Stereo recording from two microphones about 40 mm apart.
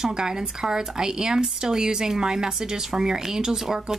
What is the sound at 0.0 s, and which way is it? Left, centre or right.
Speech, centre.